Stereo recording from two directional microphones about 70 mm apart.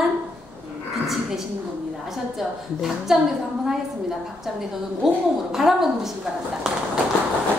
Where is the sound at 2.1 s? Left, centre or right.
Centre.